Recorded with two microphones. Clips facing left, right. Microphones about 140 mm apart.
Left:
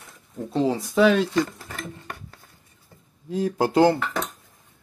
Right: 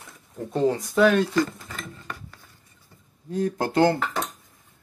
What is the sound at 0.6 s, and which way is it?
Speech, 5° left (ahead or behind).